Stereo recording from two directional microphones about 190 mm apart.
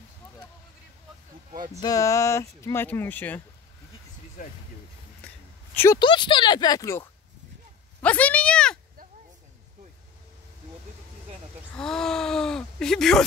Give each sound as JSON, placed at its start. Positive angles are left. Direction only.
{"t": 1.8, "sound": "speech", "side_deg": 20}
{"t": 4.4, "sound": "speech", "side_deg": 45}
{"t": 5.9, "sound": "speech", "side_deg": 25}
{"t": 8.0, "sound": "a sound", "side_deg": 5}
{"t": 11.7, "sound": "speech", "side_deg": 5}